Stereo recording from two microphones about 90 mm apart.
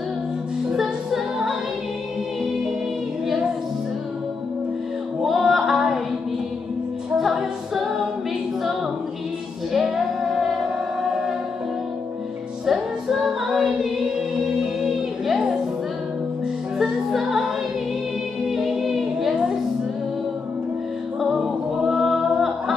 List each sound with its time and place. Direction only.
0.7 s music: 5° right (ahead or behind)
5.2 s singing: 5° right (ahead or behind)
7.2 s music: 5° right (ahead or behind)
9.7 s music: 5° right (ahead or behind)
12.6 s music: 5° right (ahead or behind)
16.7 s music: 5° right (ahead or behind)
18.5 s music: 5° right (ahead or behind)
21.2 s music: 5° right (ahead or behind)